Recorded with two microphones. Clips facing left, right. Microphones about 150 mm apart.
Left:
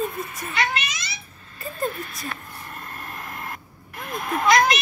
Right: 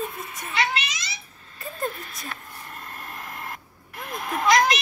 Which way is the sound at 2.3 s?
60° left (ahead or behind).